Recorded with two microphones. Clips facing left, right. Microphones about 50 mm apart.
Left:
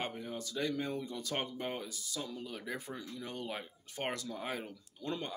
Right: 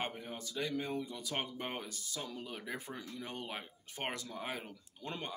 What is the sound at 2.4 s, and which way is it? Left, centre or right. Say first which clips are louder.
Speech: left 1 dB; right.